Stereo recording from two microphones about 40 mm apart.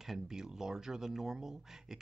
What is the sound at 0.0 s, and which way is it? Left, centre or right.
Speech, centre.